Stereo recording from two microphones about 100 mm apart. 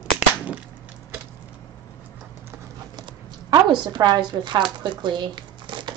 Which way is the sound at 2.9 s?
45° right (ahead or behind).